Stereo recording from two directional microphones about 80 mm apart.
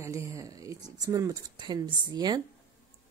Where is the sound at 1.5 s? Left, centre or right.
Right.